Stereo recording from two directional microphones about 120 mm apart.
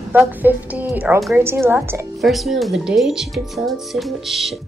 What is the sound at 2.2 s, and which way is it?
Speech, centre (ahead or behind).